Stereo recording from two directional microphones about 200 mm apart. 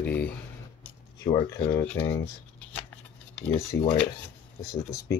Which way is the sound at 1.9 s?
10° left (ahead or behind).